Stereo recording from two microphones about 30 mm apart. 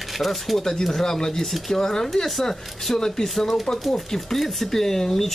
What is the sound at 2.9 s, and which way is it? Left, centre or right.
Speech, centre.